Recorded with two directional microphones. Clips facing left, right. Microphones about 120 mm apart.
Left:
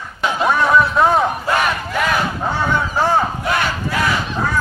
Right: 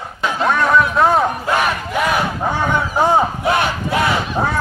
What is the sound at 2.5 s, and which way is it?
Battle cry, 15° right (ahead or behind).